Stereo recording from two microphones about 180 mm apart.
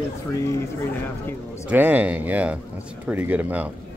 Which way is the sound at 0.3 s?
15° left (ahead or behind).